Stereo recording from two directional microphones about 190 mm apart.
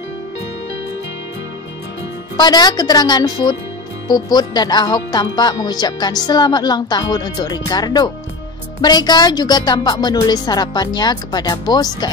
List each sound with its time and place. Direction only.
2.3 s speech: 20° left (ahead or behind)